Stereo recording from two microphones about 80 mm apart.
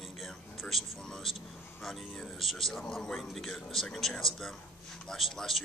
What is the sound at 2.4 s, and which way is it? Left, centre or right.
Speech, centre.